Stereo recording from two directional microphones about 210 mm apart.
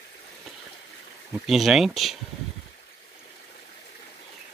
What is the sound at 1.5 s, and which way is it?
Speech, centre (ahead or behind).